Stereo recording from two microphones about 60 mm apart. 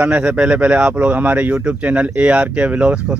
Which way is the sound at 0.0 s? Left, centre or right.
Right.